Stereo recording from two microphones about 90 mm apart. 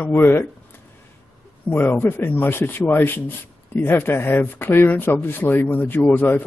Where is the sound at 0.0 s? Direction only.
20° left (ahead or behind).